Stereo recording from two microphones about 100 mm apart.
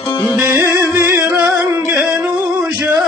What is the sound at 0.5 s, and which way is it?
Music, 35° right (ahead or behind).